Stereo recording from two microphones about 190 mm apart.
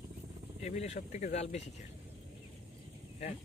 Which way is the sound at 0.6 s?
35° left (ahead or behind).